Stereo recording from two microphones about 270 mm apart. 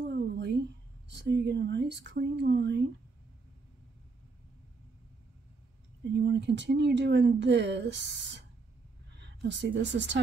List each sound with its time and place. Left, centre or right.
0.0 s a sound: right
1.0 s speech: right
6.1 s a woman's voice: right